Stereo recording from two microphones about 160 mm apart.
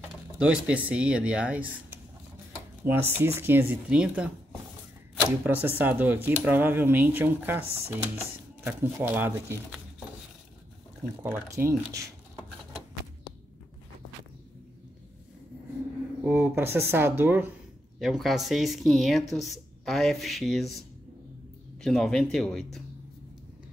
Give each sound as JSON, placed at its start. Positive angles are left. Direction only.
{"t": 0.4, "sound": "speech", "side_deg": -5}
{"t": 2.8, "sound": "speech", "side_deg": -15}
{"t": 11.2, "sound": "speech", "side_deg": -15}
{"t": 16.3, "sound": "speech", "side_deg": -10}
{"t": 17.9, "sound": "speech", "side_deg": 0}
{"t": 21.8, "sound": "speech", "side_deg": 0}